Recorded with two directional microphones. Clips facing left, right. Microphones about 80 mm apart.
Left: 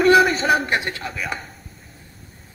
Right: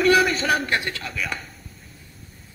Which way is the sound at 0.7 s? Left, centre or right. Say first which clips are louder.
Left 2 dB; left.